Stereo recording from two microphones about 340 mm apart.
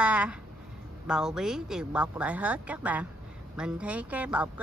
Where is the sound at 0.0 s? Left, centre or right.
Centre.